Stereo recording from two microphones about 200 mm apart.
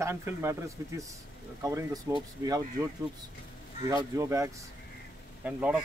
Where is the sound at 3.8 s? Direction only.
15° right (ahead or behind).